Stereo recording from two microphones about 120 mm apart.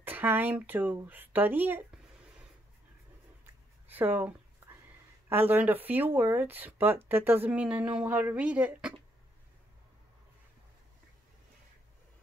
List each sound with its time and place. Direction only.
0.0 s speech: 15° right (ahead or behind)
3.8 s a sound: 15° right (ahead or behind)
5.3 s speech: 15° right (ahead or behind)